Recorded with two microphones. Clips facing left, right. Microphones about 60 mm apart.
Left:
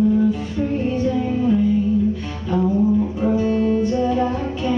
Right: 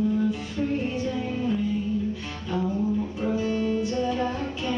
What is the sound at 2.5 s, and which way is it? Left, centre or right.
Music, centre.